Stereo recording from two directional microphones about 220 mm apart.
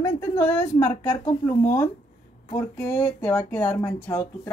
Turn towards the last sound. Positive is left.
turn(degrees=10)  # may be behind; listen again after turning